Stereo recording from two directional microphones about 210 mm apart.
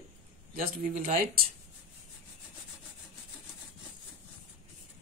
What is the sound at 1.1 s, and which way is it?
Speech, 45° right (ahead or behind).